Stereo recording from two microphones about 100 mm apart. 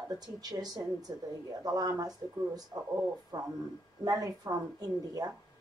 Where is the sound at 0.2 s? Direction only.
40° right (ahead or behind).